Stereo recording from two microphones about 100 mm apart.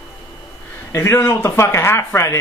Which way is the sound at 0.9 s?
25° left (ahead or behind).